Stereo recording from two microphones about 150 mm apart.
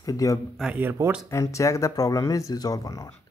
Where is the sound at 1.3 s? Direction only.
20° left (ahead or behind).